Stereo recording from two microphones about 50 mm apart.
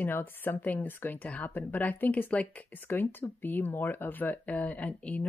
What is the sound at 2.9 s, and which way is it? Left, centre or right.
Speech, left.